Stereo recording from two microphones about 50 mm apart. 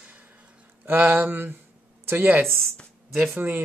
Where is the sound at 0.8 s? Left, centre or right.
Right.